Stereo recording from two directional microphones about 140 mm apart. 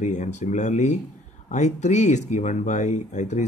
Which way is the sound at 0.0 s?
60° left (ahead or behind).